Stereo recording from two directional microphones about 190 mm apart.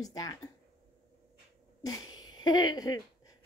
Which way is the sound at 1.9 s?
20° left (ahead or behind).